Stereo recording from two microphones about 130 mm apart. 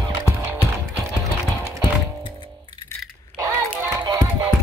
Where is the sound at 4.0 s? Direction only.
30° right (ahead or behind).